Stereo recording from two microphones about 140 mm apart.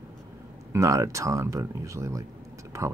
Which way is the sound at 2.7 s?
20° right (ahead or behind).